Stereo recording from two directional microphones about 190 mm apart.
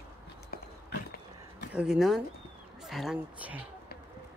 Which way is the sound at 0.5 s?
55° left (ahead or behind).